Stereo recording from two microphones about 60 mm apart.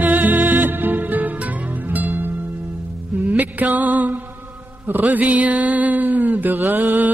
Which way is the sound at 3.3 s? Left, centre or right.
Right.